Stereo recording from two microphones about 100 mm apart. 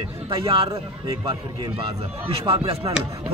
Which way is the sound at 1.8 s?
60° right (ahead or behind).